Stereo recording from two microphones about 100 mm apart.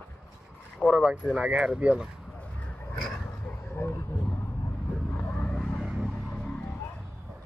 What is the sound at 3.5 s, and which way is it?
Vehicle, 25° left (ahead or behind).